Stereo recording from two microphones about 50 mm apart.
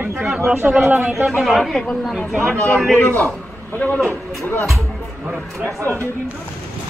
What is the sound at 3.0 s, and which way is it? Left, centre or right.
Speech, left.